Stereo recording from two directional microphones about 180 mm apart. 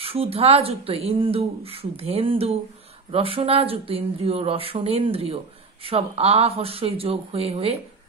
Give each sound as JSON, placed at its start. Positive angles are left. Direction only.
{"t": 0.0, "sound": "speech", "side_deg": -30}